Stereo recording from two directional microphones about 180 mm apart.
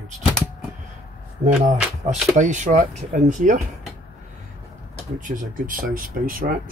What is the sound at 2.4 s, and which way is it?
Speech, 45° right (ahead or behind).